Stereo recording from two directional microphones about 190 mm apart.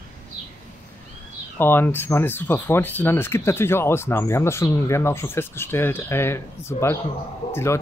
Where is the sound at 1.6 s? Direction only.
10° left (ahead or behind).